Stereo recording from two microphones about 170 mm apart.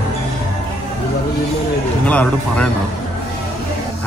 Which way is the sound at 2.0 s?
5° left (ahead or behind).